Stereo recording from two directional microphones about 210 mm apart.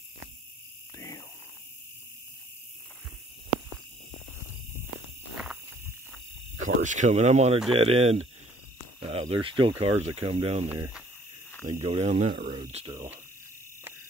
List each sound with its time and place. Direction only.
0.9 s a sound: 15° left (ahead or behind)
6.8 s speech: 35° right (ahead or behind)
10.7 s speech: 5° right (ahead or behind)
11.6 s speech: 30° right (ahead or behind)
12.7 s speech: 20° right (ahead or behind)